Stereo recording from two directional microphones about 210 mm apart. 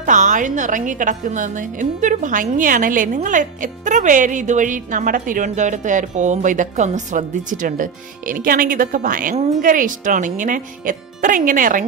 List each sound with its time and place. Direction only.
0.0 s a woman's voice: 35° right (ahead or behind)